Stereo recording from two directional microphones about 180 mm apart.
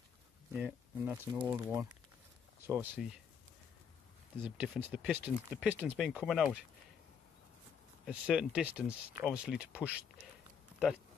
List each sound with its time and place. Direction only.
0.5 s speech: 5° right (ahead or behind)
0.9 s speech: 15° right (ahead or behind)
4.4 s speech: 5° right (ahead or behind)
8.0 s speech: 5° right (ahead or behind)